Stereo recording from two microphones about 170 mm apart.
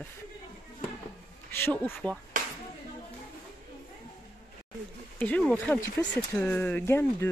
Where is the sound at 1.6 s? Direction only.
5° left (ahead or behind).